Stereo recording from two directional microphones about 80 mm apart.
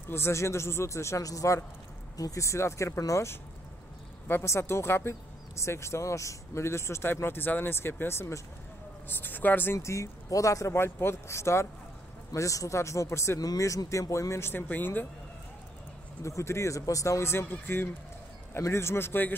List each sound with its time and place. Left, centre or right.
0.1 s speech: left
13.4 s speech: left
16.2 s speech: left